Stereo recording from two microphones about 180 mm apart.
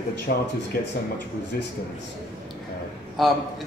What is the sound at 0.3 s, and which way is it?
Speech, 55° left (ahead or behind).